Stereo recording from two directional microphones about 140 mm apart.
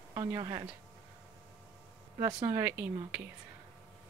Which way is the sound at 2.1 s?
25° right (ahead or behind).